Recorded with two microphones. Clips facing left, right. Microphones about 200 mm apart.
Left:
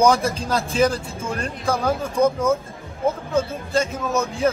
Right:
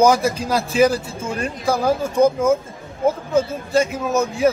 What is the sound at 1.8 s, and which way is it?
Speech, 30° right (ahead or behind).